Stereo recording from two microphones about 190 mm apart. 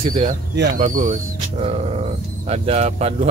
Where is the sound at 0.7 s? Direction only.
45° right (ahead or behind).